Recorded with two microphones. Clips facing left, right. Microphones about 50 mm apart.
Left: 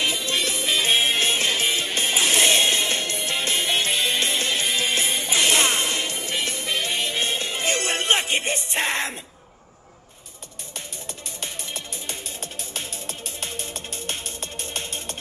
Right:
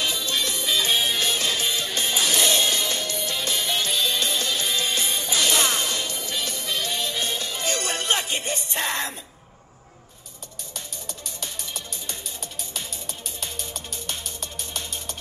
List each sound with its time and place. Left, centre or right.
0.0 s music: left
11.4 s music: left